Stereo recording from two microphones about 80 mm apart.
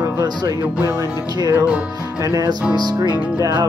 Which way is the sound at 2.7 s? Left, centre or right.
Right.